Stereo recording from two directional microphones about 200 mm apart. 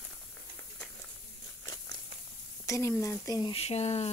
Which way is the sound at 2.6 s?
15° left (ahead or behind).